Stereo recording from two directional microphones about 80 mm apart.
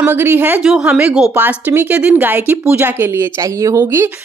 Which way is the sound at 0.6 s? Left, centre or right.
Centre.